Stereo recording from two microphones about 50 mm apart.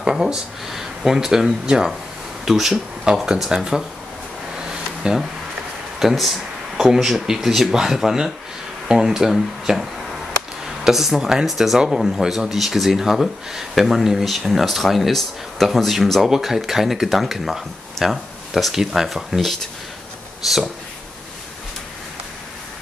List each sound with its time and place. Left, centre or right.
0.0 s speech: centre
5.1 s speech: centre
5.9 s speech: centre